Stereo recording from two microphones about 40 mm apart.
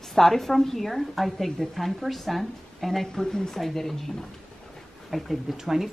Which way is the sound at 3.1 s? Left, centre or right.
Centre.